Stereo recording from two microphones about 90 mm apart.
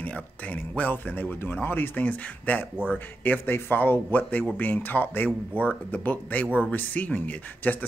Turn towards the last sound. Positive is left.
turn(degrees=20)  # may be behind; listen again after turning